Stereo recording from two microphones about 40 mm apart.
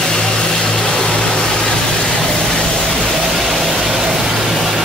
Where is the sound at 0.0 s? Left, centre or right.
Centre.